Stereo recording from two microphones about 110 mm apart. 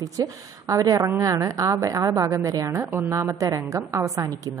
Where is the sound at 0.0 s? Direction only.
30° right (ahead or behind).